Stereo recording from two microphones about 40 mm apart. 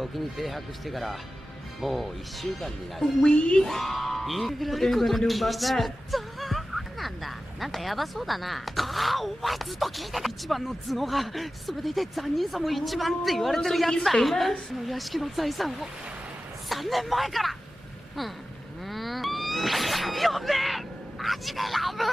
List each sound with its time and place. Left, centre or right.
0.0 s speech: centre
2.4 s speech: centre
3.2 s speech: left
3.6 s speech: centre
18.9 s a sound: centre